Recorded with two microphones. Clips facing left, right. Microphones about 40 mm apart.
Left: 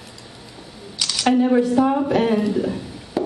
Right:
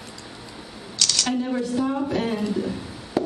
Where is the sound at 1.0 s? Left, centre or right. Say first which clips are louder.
Left 6 dB; centre.